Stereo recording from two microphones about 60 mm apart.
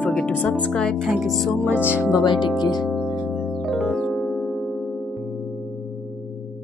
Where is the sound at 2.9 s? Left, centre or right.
Centre.